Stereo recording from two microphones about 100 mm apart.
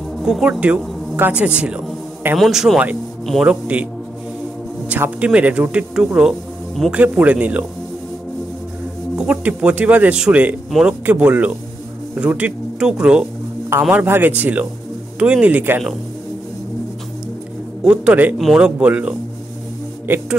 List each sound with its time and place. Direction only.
0.2 s speech: 5° right (ahead or behind)
2.3 s speech: centre (ahead or behind)
4.8 s speech: 15° right (ahead or behind)
9.1 s speech: 10° right (ahead or behind)
13.7 s a man's voice: 20° right (ahead or behind)
17.8 s speech: 15° right (ahead or behind)